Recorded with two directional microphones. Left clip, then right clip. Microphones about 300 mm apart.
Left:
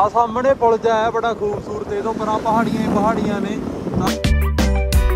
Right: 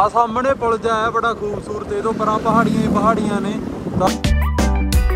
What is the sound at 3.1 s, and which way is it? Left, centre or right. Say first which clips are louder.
Music: right 1 dB; centre.